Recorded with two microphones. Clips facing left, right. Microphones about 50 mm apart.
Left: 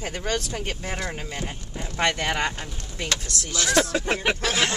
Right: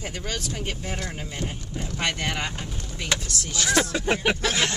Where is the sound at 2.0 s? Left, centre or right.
Left.